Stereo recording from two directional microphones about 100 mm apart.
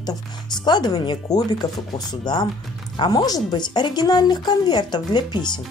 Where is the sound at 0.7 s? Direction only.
45° left (ahead or behind).